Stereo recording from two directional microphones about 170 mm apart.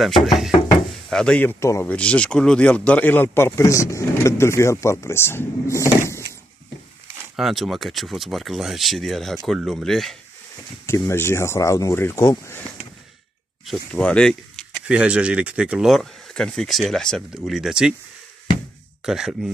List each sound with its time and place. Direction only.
0.0 s speech: centre (ahead or behind); by 6.2 s 15° left (ahead or behind)
7.3 s speech: centre (ahead or behind)
10.9 s speech: 15° left (ahead or behind)
14.9 s speech: 5° right (ahead or behind)
19.0 s speech: 5° right (ahead or behind)